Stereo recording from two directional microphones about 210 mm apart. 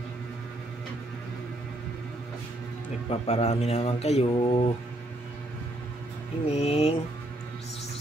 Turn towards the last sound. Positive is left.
turn(degrees=30)  # may be behind; listen again after turning